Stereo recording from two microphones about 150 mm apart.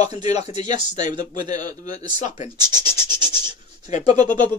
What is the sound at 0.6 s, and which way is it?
A man's voice, 30° right (ahead or behind).